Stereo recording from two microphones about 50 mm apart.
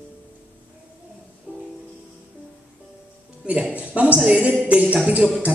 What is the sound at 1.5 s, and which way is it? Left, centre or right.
Music, right.